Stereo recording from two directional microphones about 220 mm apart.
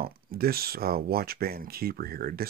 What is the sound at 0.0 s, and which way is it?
Speech, 45° right (ahead or behind).